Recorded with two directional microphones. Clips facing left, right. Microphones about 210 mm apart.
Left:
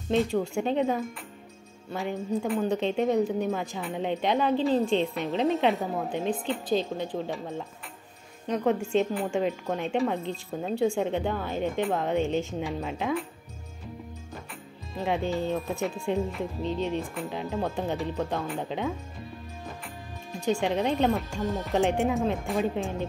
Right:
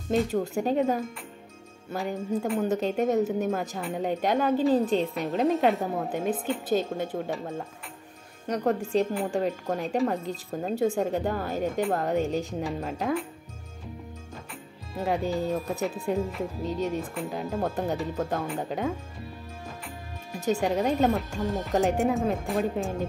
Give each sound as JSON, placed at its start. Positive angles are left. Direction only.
{"t": 0.1, "sound": "speech", "side_deg": -5}
{"t": 2.3, "sound": "speech", "side_deg": 0}
{"t": 12.2, "sound": "speech", "side_deg": -40}
{"t": 12.4, "sound": "speech", "side_deg": 0}
{"t": 14.5, "sound": "music", "side_deg": 0}
{"t": 15.8, "sound": "speech", "side_deg": 0}
{"t": 19.8, "sound": "music", "side_deg": -5}
{"t": 20.9, "sound": "speech", "side_deg": 0}